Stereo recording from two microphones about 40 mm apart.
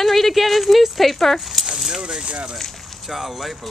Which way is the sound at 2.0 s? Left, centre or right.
Right.